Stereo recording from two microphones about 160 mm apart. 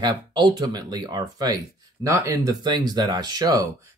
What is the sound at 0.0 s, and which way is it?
Speech, 30° right (ahead or behind).